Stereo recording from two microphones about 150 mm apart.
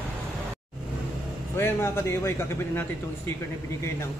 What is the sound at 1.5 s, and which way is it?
A man's voice, 15° left (ahead or behind).